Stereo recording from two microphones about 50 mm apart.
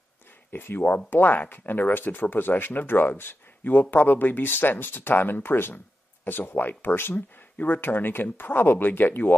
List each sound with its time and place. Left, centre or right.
0.5 s speech: left